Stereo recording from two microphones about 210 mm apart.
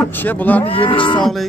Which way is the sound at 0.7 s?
25° left (ahead or behind).